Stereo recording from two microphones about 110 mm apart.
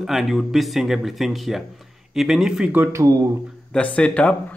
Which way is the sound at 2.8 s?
25° right (ahead or behind).